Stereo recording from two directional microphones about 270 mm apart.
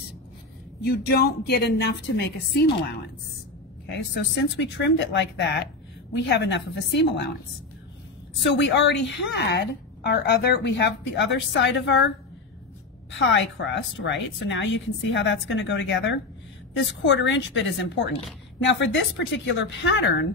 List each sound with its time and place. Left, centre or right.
0.8 s a woman's voice: left
4.1 s a woman's voice: left
8.4 s a woman's voice: left
13.2 s a woman's voice: left